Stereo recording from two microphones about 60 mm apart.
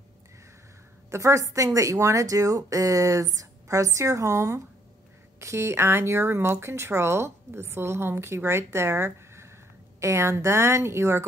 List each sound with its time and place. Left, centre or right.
1.1 s speech: right